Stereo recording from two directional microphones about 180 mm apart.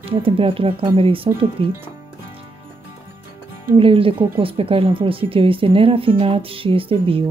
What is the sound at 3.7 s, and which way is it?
Speech, 30° right (ahead or behind).